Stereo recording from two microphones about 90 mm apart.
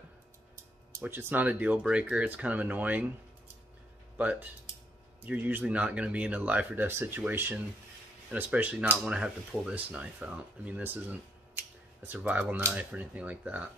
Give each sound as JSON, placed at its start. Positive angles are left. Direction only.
{"t": 1.0, "sound": "speech", "side_deg": -20}
{"t": 4.2, "sound": "speech", "side_deg": -15}
{"t": 12.7, "sound": "speech", "side_deg": -15}